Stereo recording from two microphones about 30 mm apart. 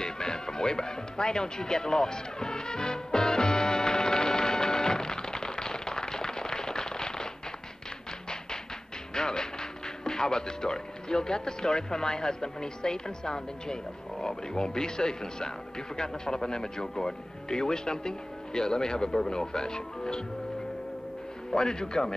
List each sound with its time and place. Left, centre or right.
0.0 s music: left
9.1 s speech: left
21.5 s speech: left